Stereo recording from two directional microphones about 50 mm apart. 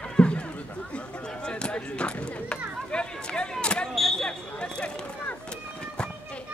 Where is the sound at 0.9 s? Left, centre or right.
Left.